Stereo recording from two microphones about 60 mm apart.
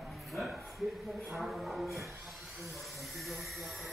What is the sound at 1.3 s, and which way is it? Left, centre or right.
Speech, centre.